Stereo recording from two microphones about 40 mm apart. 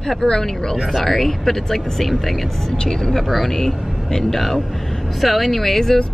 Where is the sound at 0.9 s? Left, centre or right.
Centre.